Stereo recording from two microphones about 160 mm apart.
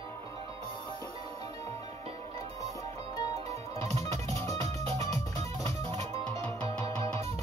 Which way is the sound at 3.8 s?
40° right (ahead or behind).